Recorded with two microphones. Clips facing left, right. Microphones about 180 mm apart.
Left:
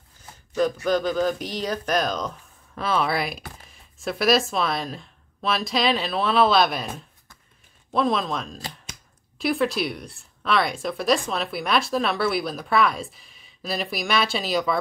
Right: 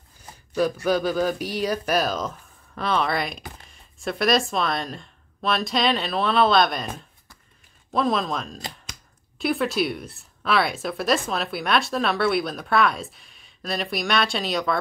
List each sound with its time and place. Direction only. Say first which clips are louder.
0.8 s speech: even; 10° right (ahead or behind)